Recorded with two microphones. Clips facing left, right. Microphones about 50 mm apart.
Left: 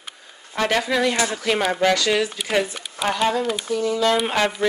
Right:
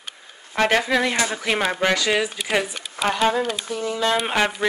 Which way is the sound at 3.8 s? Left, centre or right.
Right.